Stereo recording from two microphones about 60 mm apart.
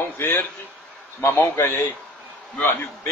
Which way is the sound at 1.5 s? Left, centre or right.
Left.